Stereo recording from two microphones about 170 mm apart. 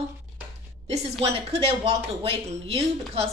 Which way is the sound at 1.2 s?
35° right (ahead or behind).